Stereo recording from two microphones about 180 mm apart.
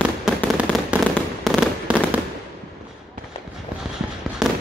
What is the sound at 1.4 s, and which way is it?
Fireworks, centre (ahead or behind).